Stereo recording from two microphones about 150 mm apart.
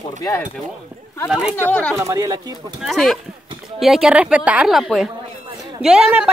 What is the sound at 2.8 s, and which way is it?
A woman's voice, centre (ahead or behind).